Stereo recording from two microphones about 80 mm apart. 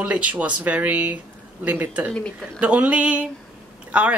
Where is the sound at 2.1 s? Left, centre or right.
Centre.